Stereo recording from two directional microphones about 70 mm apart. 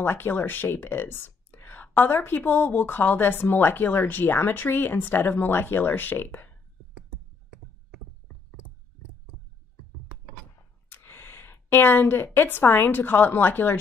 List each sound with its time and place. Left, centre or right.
0.0 s speech: left
10.9 s a woman's voice: left